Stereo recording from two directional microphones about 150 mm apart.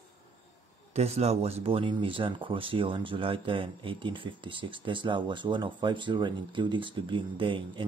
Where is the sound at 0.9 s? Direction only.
45° right (ahead or behind).